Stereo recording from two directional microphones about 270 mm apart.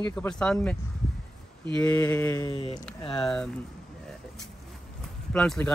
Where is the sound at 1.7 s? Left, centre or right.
Centre.